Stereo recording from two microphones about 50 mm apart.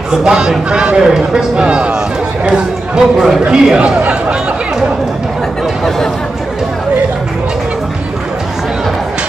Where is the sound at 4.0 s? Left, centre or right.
Right.